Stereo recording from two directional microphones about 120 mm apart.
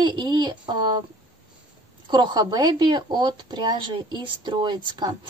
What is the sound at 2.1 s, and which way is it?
A woman's voice, 40° right (ahead or behind).